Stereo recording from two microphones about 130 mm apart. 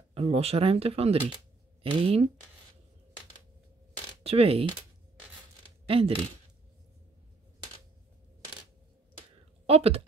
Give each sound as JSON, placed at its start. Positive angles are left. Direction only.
{"t": 0.1, "sound": "speech", "side_deg": -50}
{"t": 4.2, "sound": "speech", "side_deg": -50}
{"t": 5.9, "sound": "speech", "side_deg": -45}
{"t": 9.7, "sound": "speech", "side_deg": -50}